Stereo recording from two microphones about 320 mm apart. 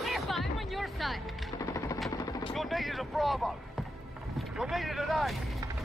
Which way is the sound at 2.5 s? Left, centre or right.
Centre.